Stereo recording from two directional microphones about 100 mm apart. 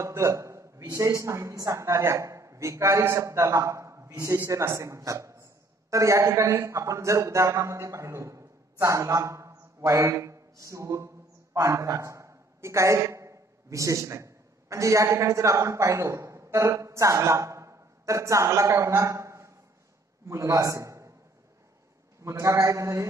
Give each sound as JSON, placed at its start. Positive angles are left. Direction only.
{"t": 0.0, "sound": "a sound", "side_deg": -30}
{"t": 0.9, "sound": "a woman's voice", "side_deg": -30}
{"t": 22.2, "sound": "a woman's voice", "side_deg": -30}